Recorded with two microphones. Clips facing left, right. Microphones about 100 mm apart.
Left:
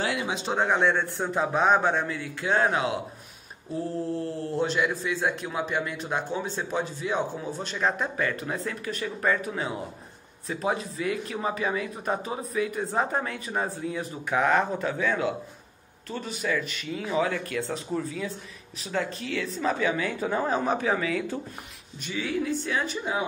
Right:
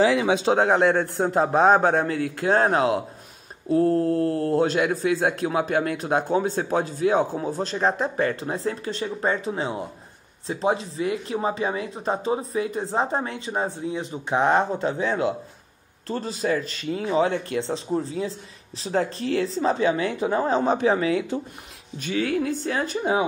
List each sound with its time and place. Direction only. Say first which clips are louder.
0.5 s a man's voice: right 7 dB; 55° right (ahead or behind)
0.8 s speech: right 5 dB; 40° right (ahead or behind)
2.5 s speech: right 4 dB; 40° right (ahead or behind)
3.7 s speech: right 10 dB; 60° right (ahead or behind); by 21.4 s 25° right (ahead or behind)
22.1 s speech: right 5 dB; 55° right (ahead or behind)
22.5 s speech: right 3 dB; 35° right (ahead or behind)